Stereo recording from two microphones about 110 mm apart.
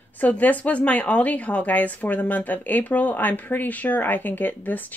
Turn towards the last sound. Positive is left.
turn(degrees=15)  # may be behind; listen again after turning